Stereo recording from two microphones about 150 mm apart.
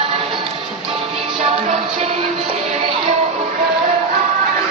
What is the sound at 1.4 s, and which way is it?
Music, 45° right (ahead or behind).